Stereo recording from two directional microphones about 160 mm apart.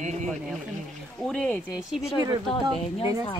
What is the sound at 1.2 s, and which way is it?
Speech, 5° left (ahead or behind).